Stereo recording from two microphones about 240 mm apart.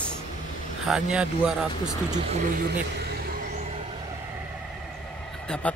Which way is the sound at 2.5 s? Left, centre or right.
Right.